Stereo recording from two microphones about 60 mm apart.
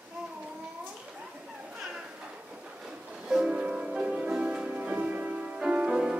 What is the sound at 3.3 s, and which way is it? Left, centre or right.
Music, centre.